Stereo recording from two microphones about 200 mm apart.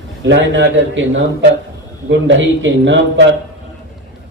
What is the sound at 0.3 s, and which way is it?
A man's voice, 65° right (ahead or behind).